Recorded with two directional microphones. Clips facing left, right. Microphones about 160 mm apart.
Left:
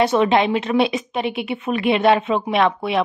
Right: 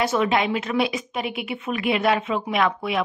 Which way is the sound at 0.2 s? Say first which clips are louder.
Left 5 dB; 25° left (ahead or behind).